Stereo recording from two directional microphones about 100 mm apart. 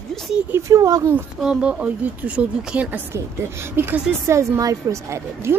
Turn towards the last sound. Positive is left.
turn(degrees=-30)  # may be behind; listen again after turning